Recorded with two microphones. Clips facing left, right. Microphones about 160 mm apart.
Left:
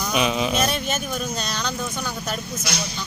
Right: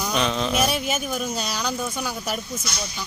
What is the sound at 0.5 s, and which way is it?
Speech, 5° right (ahead or behind).